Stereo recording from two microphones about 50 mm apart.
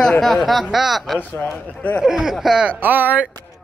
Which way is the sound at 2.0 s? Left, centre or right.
Centre.